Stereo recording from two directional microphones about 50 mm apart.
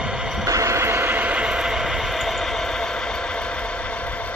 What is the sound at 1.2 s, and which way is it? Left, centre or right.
Train, right.